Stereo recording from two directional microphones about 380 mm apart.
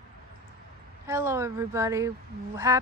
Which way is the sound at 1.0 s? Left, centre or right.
Centre.